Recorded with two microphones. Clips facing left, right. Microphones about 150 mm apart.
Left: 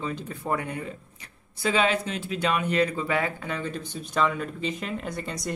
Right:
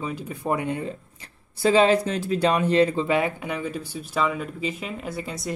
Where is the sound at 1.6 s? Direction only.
35° right (ahead or behind).